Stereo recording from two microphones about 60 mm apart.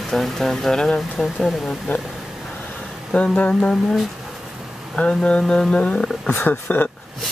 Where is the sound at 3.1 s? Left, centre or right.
Centre.